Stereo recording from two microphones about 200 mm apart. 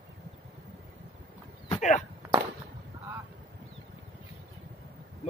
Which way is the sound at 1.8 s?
40° left (ahead or behind).